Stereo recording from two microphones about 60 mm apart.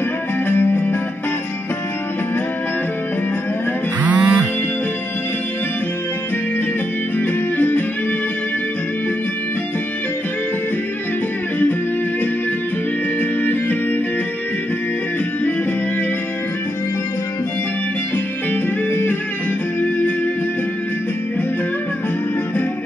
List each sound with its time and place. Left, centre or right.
0.5 s music: left
4.0 s music: right
7.2 s music: left
13.2 s music: left
18.1 s music: left